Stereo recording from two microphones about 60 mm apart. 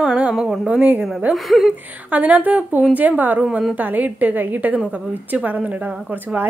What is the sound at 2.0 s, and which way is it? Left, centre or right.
A woman's voice, right.